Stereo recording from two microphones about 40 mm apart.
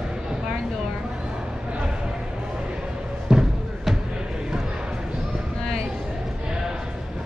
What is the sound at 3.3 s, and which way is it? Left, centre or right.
Music, centre.